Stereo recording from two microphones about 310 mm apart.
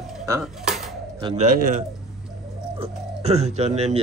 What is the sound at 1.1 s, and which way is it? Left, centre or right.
Speech, centre.